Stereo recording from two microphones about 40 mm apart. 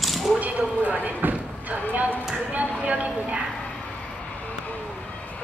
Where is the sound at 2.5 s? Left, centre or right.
Right.